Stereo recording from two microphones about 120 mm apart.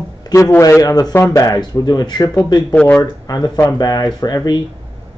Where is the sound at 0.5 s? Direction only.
25° left (ahead or behind).